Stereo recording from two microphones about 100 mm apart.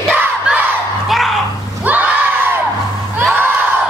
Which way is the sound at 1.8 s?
15° right (ahead or behind).